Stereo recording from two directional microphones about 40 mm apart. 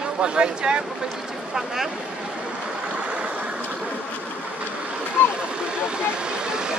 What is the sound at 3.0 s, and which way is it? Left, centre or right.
Vehicle, right.